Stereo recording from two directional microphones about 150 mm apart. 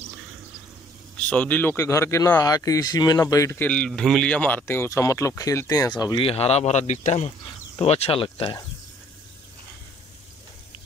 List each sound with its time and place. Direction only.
1.2 s a man's voice: 10° left (ahead or behind); by 8.5 s 35° left (ahead or behind)